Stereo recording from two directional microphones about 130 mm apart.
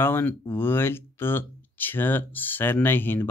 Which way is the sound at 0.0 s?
15° left (ahead or behind).